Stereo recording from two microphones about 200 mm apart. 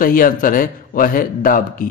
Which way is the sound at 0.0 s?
45° left (ahead or behind).